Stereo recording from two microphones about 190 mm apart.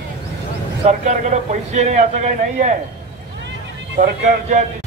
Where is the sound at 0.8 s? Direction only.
40° right (ahead or behind).